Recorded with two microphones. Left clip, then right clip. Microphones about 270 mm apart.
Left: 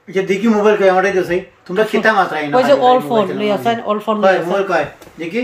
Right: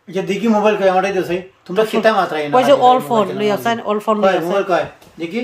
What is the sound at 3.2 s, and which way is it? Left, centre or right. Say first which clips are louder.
Speech: left 1 dB; centre.